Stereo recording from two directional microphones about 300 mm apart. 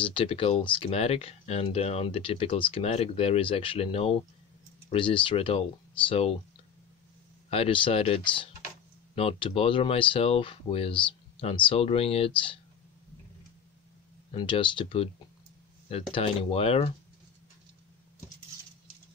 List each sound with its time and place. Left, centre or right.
0.0 s speech: centre
7.4 s speech: centre
14.3 s speech: centre